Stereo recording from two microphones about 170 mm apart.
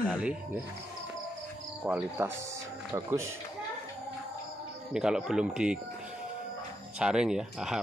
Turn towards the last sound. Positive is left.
turn(degrees=0)  # may be behind; listen again after turning